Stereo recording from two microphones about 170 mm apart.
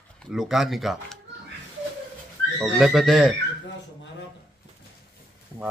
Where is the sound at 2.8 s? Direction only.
Centre (ahead or behind).